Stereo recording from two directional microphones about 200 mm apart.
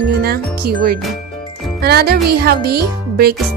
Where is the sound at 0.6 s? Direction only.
50° right (ahead or behind).